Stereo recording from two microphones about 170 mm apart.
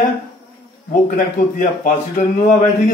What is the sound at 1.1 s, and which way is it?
Speech, 45° left (ahead or behind).